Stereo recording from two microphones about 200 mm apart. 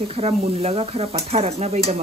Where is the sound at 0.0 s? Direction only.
30° right (ahead or behind).